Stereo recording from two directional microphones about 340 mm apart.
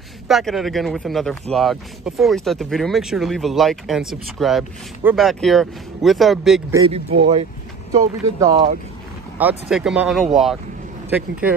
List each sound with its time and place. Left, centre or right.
0.3 s speech: centre
6.9 s speech: centre